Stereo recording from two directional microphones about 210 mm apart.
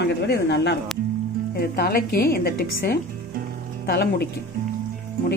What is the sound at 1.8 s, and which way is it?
A woman's voice, 45° left (ahead or behind).